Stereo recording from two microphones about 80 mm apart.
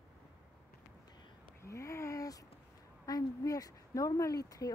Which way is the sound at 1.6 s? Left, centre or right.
Left.